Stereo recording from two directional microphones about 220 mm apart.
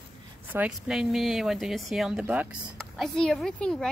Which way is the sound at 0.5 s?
5° right (ahead or behind).